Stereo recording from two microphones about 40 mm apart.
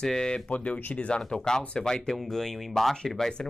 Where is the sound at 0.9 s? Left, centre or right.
Left.